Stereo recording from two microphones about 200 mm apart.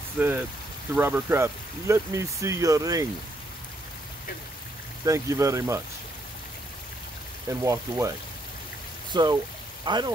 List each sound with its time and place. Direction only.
0.2 s speech: 10° right (ahead or behind)
5.0 s speech: 15° right (ahead or behind)
7.4 s speech: 15° right (ahead or behind)
9.1 s speech: 20° right (ahead or behind)